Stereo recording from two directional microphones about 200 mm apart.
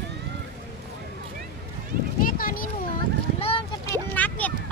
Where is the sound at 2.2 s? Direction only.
45° left (ahead or behind).